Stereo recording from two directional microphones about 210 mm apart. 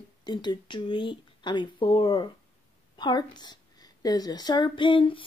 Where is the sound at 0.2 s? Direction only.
20° left (ahead or behind).